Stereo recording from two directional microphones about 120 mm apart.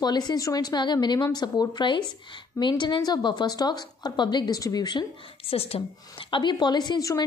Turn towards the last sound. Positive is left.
turn(degrees=30)  # may be behind; listen again after turning